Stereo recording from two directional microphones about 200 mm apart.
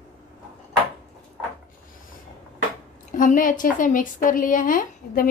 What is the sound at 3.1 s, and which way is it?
Speech, 40° left (ahead or behind).